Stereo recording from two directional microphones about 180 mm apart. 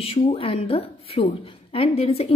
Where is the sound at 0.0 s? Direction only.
30° left (ahead or behind).